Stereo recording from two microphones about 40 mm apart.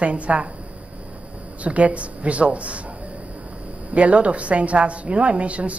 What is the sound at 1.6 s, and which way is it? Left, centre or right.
A woman's voice, right.